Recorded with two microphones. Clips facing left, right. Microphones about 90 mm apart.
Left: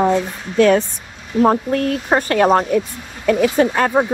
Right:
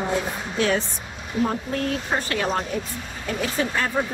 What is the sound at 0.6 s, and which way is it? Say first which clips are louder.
A woman's voice: left 10 dB; 55° left (ahead or behind).